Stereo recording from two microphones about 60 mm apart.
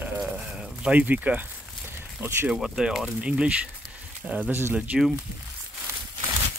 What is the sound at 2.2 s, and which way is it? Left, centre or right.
Speech, right.